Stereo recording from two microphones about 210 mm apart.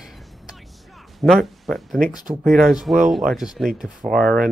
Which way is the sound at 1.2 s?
Centre (ahead or behind).